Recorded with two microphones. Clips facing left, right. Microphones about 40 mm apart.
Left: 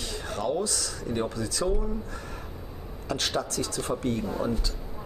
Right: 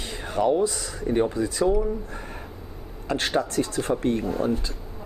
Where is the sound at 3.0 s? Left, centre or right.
Right.